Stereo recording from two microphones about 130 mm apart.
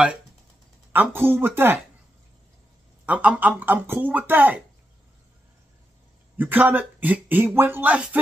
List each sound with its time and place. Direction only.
0.9 s speech: 15° right (ahead or behind)
3.1 s speech: 10° right (ahead or behind)
6.3 s speech: 15° right (ahead or behind)